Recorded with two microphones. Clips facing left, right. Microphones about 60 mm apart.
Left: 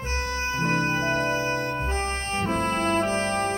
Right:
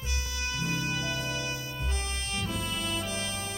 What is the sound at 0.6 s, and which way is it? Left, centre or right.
Music, left.